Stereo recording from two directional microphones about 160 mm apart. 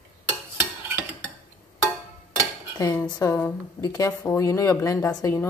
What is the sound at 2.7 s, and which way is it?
A woman's voice, 25° left (ahead or behind).